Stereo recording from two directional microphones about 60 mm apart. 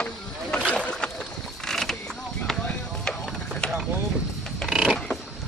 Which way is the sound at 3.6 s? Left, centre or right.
Centre.